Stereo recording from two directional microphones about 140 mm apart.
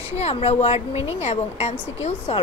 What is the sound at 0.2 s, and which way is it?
Speech, 45° left (ahead or behind).